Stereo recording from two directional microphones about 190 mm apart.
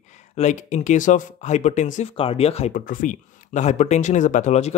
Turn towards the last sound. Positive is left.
turn(degrees=35)  # may be behind; listen again after turning